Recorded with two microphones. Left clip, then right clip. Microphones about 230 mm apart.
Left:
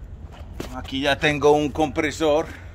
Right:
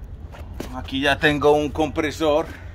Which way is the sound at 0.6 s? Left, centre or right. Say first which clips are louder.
Right 2 dB; centre.